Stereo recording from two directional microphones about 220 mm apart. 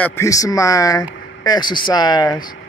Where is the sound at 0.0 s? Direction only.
10° left (ahead or behind).